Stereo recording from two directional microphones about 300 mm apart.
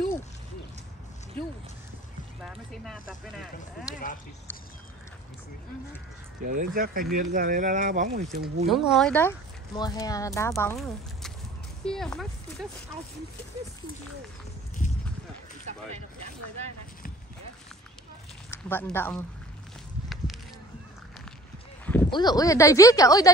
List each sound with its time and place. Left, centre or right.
2.4 s speech: centre
6.4 s speech: right
8.6 s speech: centre
15.7 s zipper: right
18.5 s speech: centre
21.8 s speech: centre